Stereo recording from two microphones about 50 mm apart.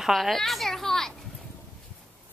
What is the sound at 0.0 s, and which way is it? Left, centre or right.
A woman's voice, centre.